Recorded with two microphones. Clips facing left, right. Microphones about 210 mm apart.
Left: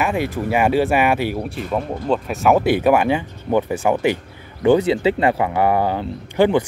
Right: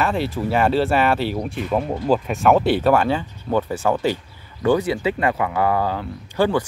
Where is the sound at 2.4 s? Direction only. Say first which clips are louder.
Left 2 dB; 10° left (ahead or behind).